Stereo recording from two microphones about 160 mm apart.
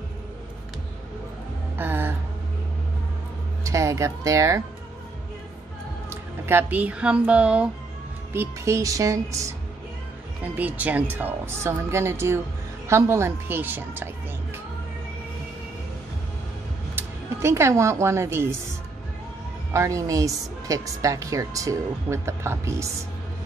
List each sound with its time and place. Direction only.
1.8 s a sound: 15° right (ahead or behind)
3.6 s a woman's voice: 20° right (ahead or behind)
6.0 s a woman's voice: 15° right (ahead or behind)
16.9 s speech: 15° right (ahead or behind)
19.7 s a woman's voice: 20° right (ahead or behind)